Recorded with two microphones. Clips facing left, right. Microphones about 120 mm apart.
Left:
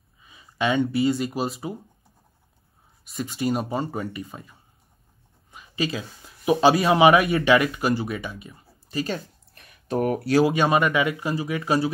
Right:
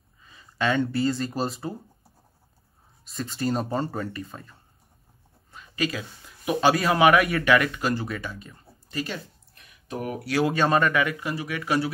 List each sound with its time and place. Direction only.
0.2 s speech: 15° left (ahead or behind)
3.1 s a man's voice: 5° left (ahead or behind)
9.6 s a sound: 55° left (ahead or behind)
10.5 s speech: 15° left (ahead or behind)